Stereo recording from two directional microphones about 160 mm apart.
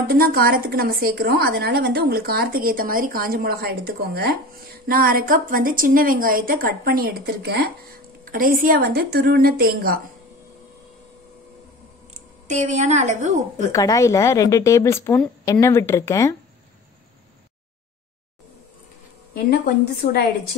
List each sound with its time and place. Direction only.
0.0 s a woman's voice: 70° right (ahead or behind)
12.4 s a woman's voice: 50° right (ahead or behind)
13.7 s speech: 20° left (ahead or behind)
19.3 s a woman's voice: 70° left (ahead or behind)